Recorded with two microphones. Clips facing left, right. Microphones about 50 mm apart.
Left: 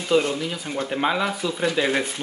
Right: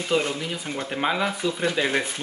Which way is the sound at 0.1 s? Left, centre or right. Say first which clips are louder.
Left 4 dB; centre.